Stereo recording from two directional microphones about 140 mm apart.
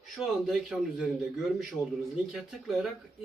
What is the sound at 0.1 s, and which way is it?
A man's voice, centre (ahead or behind).